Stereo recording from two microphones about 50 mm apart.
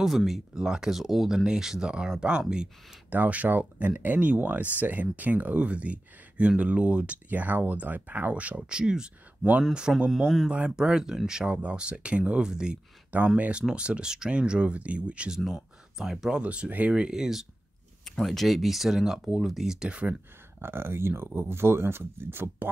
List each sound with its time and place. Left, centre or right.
0.0 s speech: centre
3.1 s speech: right
7.2 s speech: right; by 10.1 s centre
10.1 s speech: centre
10.8 s speech: centre
15.3 s speech: centre
16.3 s speech: right
16.9 s speech: centre
18.2 s speech: centre
19.9 s speech: right
20.6 s speech: right